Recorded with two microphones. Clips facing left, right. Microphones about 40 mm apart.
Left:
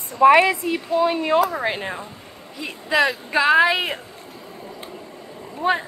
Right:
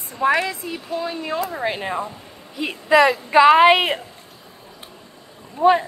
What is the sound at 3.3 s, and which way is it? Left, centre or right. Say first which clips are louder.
Speech: right 4 dB; centre.